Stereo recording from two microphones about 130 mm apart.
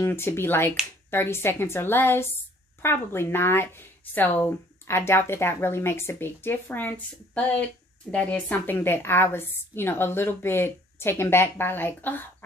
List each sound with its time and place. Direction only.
0.0 s speech: 20° left (ahead or behind)